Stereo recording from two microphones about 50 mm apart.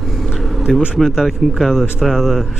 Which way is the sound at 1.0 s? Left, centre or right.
Centre.